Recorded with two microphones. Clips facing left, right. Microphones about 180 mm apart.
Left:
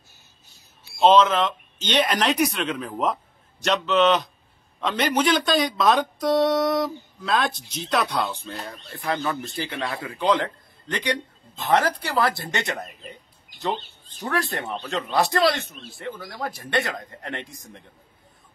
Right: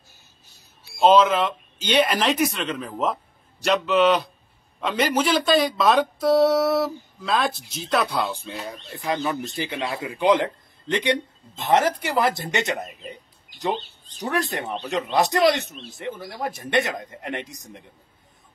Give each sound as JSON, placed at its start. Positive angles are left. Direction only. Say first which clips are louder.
{"t": 0.9, "sound": "a man's voice", "louder": "even", "side_deg": -5}
{"t": 8.7, "sound": "speech", "louder": "right 1 dB", "side_deg": -15}
{"t": 13.1, "sound": "bird", "louder": "right 3 dB", "side_deg": -15}
{"t": 14.5, "sound": "speech", "louder": "right 2 dB", "side_deg": -20}